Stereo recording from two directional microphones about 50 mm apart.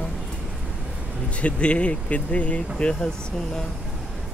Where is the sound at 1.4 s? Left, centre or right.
Left.